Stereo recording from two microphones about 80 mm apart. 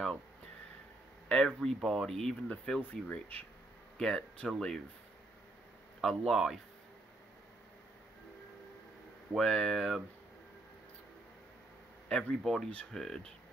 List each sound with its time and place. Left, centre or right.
1.3 s speech: centre
4.0 s speech: centre
5.9 s speech: centre
9.4 s speech: centre
12.1 s speech: centre